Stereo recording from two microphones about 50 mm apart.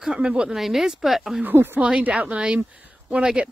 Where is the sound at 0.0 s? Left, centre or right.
Centre.